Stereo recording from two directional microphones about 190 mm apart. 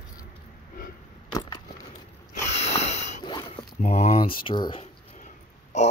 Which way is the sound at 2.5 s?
35° left (ahead or behind).